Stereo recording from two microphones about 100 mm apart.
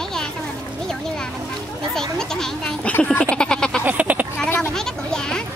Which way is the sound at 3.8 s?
15° right (ahead or behind).